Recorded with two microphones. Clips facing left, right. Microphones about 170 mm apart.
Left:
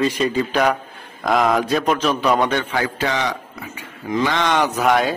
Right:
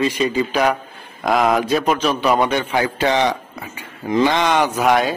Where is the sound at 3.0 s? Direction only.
25° right (ahead or behind).